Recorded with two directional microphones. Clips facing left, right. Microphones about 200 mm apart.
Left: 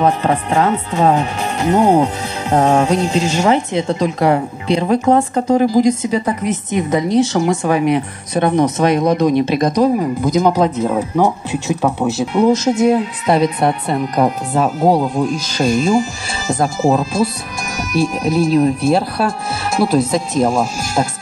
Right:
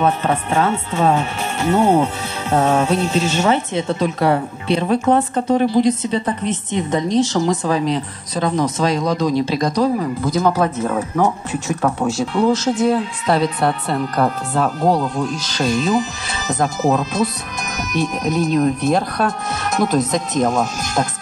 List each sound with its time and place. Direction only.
0.0 s speech: 35° left (ahead or behind)
5.9 s speech: 10° left (ahead or behind)
6.9 s a woman's voice: 80° left
7.4 s speech: 65° left (ahead or behind)
9.7 s speech: 20° left (ahead or behind)